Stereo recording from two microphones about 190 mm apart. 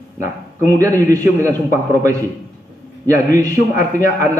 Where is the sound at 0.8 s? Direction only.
15° right (ahead or behind).